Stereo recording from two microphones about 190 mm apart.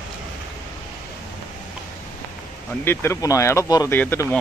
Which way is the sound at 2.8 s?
15° left (ahead or behind).